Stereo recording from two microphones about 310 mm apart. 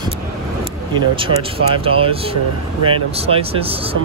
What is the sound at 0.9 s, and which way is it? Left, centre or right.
Speech, centre.